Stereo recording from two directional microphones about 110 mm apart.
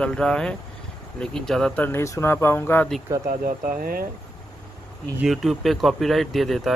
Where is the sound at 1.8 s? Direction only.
25° left (ahead or behind).